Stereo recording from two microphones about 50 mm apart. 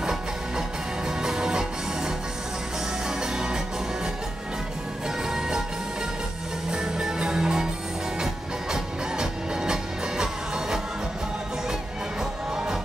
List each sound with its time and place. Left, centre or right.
0.0 s music: centre
3.2 s music: centre
6.7 s music: centre
8.7 s music: centre